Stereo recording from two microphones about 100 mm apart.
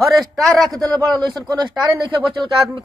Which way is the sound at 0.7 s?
35° right (ahead or behind).